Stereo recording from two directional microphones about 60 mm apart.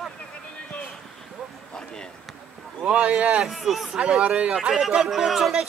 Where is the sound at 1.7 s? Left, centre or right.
Centre.